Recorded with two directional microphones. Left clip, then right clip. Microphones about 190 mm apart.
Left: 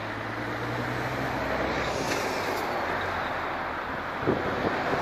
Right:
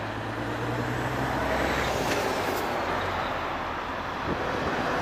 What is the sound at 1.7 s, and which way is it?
Vehicle, 30° right (ahead or behind).